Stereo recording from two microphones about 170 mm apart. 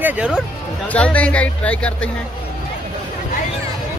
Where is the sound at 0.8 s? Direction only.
10° left (ahead or behind).